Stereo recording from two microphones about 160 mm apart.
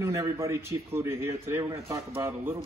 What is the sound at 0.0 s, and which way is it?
A man's voice, 20° right (ahead or behind).